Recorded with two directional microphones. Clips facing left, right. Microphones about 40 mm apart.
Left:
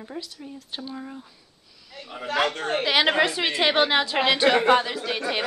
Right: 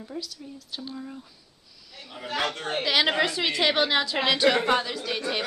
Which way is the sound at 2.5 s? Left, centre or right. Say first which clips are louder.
Left 4 dB; left.